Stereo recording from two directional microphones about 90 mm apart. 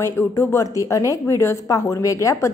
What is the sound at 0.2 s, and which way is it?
Speech, 30° left (ahead or behind).